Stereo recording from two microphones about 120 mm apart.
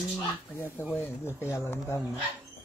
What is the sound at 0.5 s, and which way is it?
Speech, 20° left (ahead or behind).